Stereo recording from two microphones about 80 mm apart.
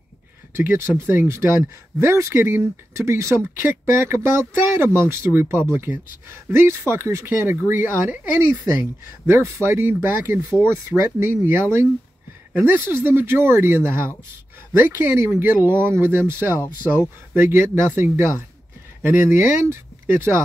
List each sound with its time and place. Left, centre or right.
0.7 s speech: right